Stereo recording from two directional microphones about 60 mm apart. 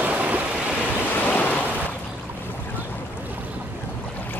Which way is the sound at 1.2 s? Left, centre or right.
Left.